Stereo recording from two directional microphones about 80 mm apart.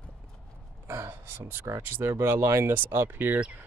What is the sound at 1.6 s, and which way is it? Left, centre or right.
Speech, right.